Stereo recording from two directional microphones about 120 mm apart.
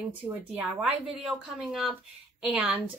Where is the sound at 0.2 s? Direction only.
5° right (ahead or behind).